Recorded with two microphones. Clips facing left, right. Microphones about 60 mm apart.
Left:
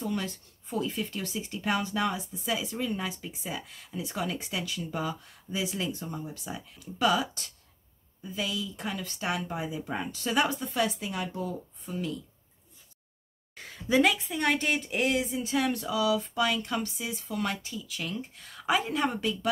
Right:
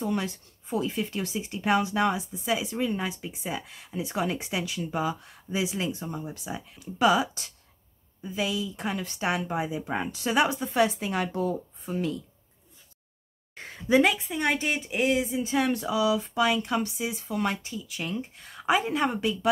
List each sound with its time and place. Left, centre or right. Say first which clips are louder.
0.0 s a woman's voice: right 3 dB; right
6.0 s a woman's voice: right 2 dB; right
6.3 s a woman's voice: right 3 dB; centre
9.0 s a woman's voice: right 3 dB; centre
9.8 s a woman's voice: right 3 dB; right
10.3 s a woman's voice: right 3 dB; centre
10.7 s a woman's voice: right 5 dB; right
13.8 s a woman's voice: right 2 dB; centre